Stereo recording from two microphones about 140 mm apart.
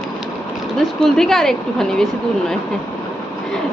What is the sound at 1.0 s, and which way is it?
Speech, 5° left (ahead or behind).